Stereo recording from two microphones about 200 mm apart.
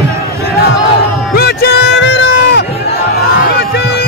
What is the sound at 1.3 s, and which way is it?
Music, 50° left (ahead or behind).